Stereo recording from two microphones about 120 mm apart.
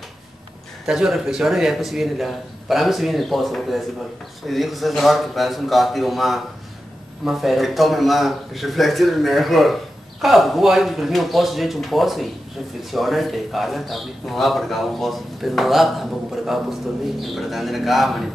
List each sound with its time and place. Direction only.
0.8 s a man's voice: 5° right (ahead or behind)